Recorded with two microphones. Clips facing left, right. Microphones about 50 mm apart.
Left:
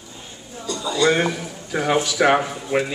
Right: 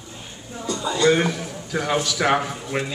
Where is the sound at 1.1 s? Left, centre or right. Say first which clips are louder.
Right 3 dB; centre.